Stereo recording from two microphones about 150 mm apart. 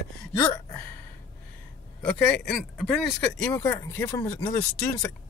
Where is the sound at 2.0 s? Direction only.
10° left (ahead or behind).